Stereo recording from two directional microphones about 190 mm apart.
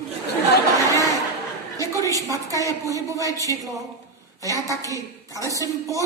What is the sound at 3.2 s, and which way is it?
Speech, 15° left (ahead or behind).